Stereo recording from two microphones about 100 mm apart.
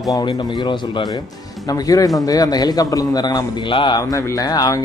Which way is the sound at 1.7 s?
35° left (ahead or behind).